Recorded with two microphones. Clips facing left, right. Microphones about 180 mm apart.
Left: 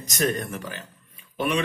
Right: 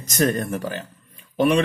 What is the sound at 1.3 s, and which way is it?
Speech, 45° right (ahead or behind).